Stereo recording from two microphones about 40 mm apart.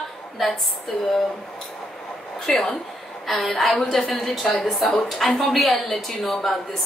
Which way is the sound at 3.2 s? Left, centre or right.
Centre.